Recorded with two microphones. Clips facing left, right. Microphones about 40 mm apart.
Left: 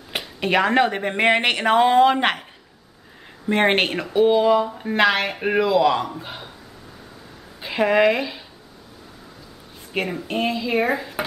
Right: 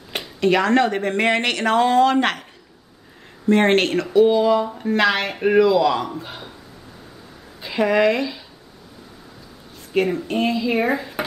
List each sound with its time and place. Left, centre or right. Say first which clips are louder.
0.4 s speech: right 1 dB; centre
3.4 s speech: right 2 dB; centre
7.6 s speech: even; centre
9.9 s speech: right 4 dB; centre